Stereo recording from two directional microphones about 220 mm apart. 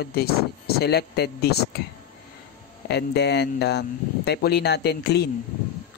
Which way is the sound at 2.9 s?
50° left (ahead or behind).